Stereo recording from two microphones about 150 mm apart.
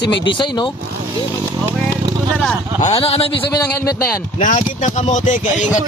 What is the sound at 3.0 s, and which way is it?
Speech, 40° left (ahead or behind).